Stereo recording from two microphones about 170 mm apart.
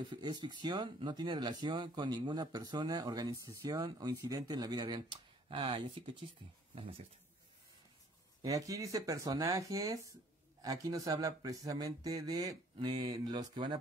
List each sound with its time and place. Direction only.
0.1 s speech: 25° right (ahead or behind)
8.4 s speech: 20° right (ahead or behind)